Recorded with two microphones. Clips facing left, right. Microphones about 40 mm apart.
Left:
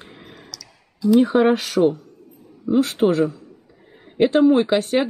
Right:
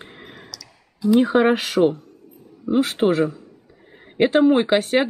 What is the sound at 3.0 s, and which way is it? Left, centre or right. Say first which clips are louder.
A man's voice: left 1 dB; right.